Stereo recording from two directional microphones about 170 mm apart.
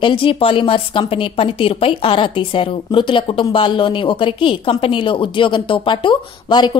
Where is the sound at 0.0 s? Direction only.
30° left (ahead or behind).